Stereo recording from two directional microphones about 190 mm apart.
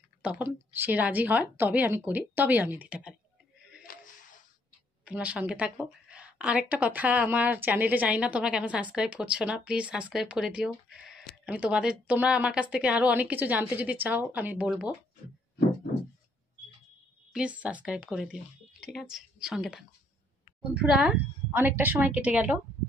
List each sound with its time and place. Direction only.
0.2 s a woman's voice: 10° right (ahead or behind)
3.9 s a sound: 50° left (ahead or behind)
5.0 s a woman's voice: 5° right (ahead or behind)
17.3 s a woman's voice: 5° right (ahead or behind)